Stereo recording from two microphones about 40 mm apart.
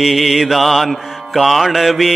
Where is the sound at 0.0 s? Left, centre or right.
Centre.